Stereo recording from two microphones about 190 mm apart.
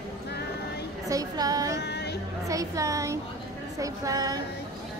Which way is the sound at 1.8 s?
60° left (ahead or behind).